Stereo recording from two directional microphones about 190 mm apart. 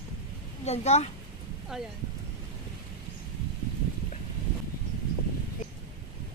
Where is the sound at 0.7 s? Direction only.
35° left (ahead or behind).